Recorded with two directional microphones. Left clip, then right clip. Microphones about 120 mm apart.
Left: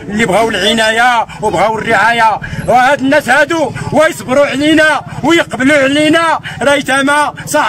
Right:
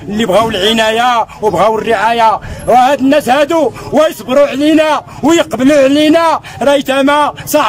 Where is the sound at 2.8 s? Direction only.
25° right (ahead or behind).